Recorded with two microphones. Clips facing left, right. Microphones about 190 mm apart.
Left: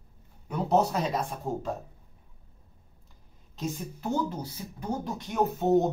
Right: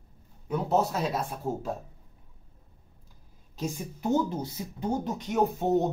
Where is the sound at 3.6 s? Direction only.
15° right (ahead or behind).